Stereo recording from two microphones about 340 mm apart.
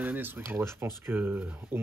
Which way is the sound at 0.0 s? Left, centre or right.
Centre.